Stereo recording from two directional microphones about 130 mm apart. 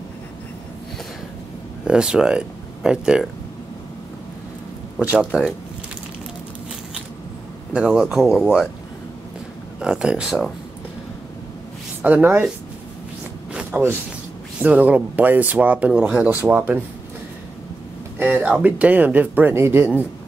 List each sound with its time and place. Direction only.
1.9 s speech: 5° right (ahead or behind)
5.0 s speech: 10° right (ahead or behind)
7.7 s speech: 5° right (ahead or behind)
9.8 s speech: 5° right (ahead or behind)
12.0 s speech: 15° right (ahead or behind)
13.5 s a sound: 10° right (ahead or behind)
14.6 s speech: 10° right (ahead or behind)
18.2 s speech: 10° right (ahead or behind)